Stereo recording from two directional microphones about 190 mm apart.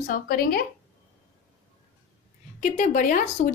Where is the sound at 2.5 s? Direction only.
40° left (ahead or behind).